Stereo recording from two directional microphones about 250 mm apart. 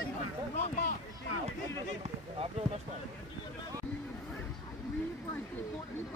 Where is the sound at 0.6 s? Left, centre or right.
Left.